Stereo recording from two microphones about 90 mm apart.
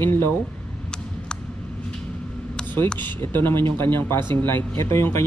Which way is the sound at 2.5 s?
10° left (ahead or behind).